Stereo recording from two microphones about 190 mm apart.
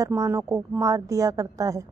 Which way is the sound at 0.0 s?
15° right (ahead or behind).